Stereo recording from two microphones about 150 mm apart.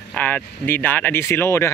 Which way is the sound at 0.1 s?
10° left (ahead or behind).